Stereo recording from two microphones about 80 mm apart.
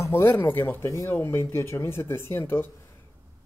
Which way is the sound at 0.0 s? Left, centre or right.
Left.